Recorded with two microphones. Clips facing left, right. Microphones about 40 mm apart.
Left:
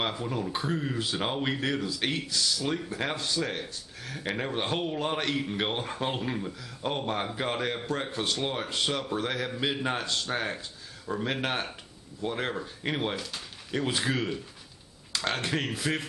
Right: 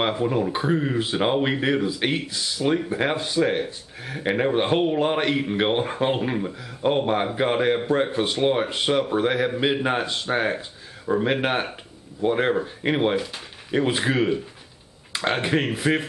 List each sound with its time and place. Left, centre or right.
0.0 s speech: right